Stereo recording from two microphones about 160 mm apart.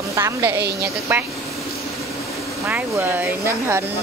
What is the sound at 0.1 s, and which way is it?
Speech, 15° right (ahead or behind).